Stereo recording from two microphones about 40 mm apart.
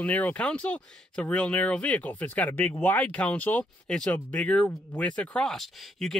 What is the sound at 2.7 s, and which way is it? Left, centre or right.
Speech, left.